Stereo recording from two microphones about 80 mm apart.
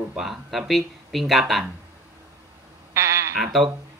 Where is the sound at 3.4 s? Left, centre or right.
Centre.